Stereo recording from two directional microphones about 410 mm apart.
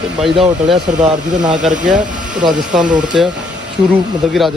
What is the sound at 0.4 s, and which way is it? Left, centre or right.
Speech, centre.